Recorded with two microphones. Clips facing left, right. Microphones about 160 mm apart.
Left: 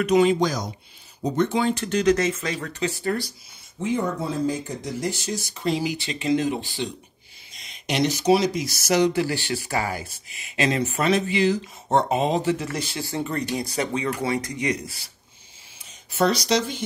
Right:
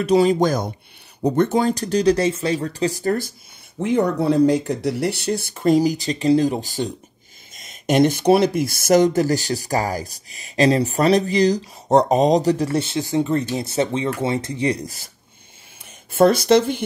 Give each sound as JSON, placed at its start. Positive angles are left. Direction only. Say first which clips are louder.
{"t": 0.0, "sound": "speech", "louder": "right 3 dB", "side_deg": -35}
{"t": 3.8, "sound": "speech", "louder": "right 7 dB", "side_deg": -70}
{"t": 16.1, "sound": "speech", "louder": "right 7 dB", "side_deg": -50}